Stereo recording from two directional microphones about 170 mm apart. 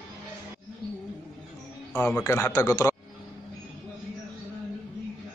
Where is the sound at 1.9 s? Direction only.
10° left (ahead or behind).